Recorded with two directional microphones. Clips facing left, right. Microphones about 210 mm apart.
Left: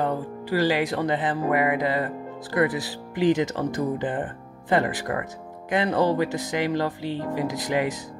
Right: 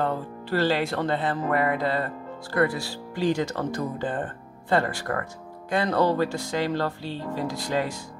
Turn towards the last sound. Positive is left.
turn(degrees=15)  # may be behind; listen again after turning